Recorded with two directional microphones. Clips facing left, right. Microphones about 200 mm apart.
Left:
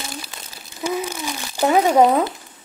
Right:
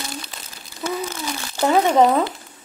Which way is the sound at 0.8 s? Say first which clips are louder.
Left 2 dB; 10° left (ahead or behind).